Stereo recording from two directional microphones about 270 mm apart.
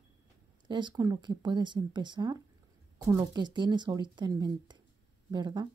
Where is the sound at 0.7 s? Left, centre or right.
Centre.